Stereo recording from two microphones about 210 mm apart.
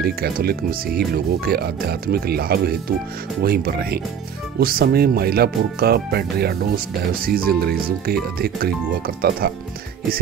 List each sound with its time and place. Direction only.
0.0 s speech: 45° right (ahead or behind)